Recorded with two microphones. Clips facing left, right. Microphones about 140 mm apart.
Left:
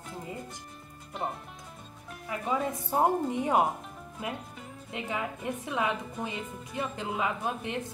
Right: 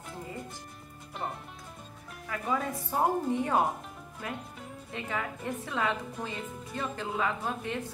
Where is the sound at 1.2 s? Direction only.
20° left (ahead or behind).